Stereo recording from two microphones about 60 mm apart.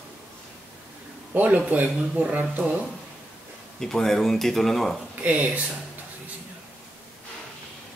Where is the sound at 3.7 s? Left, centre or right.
Centre.